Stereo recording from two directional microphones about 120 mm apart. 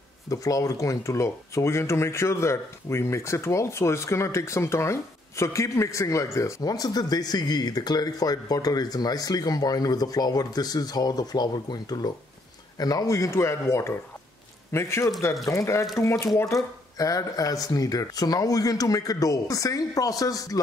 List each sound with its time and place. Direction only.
0.3 s speech: 30° left (ahead or behind)